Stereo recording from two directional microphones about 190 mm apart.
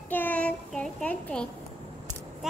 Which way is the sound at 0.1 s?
10° left (ahead or behind).